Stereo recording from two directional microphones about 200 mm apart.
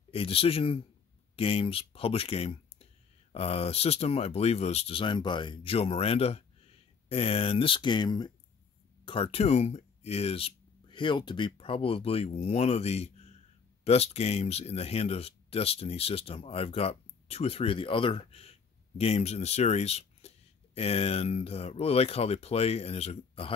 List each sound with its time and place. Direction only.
0.1 s speech: 30° left (ahead or behind)